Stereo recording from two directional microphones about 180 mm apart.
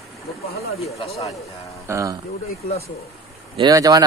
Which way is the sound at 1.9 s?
15° right (ahead or behind).